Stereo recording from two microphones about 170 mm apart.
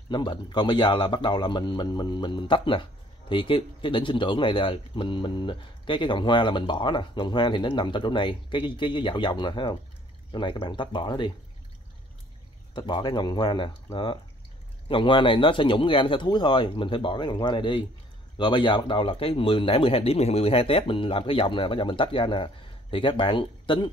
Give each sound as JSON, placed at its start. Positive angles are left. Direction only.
{"t": 0.1, "sound": "a man's voice", "side_deg": 25}
{"t": 12.7, "sound": "a man's voice", "side_deg": 25}
{"t": 14.9, "sound": "a man's voice", "side_deg": 30}